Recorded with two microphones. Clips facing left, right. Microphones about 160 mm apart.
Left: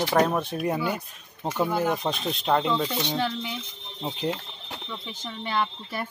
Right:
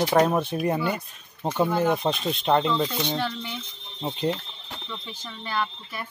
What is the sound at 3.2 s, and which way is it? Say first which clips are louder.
Speech: left 1 dB; 10° left (ahead or behind).